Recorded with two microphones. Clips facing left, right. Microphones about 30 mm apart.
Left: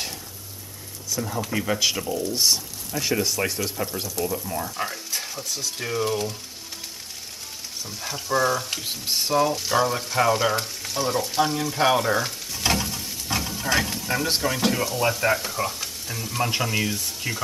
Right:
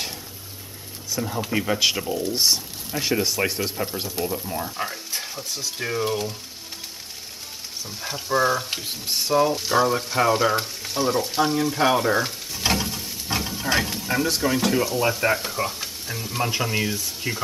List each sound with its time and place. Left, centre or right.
1.2 s speech: centre
4.0 s speech: right
4.4 s speech: centre
5.1 s stir: centre
5.4 s speech: centre
8.0 s speech: centre
8.8 s speech: centre
13.7 s a sound: centre
14.4 s speech: centre